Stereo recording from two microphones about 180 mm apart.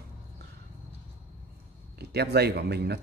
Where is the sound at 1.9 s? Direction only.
65° right (ahead or behind).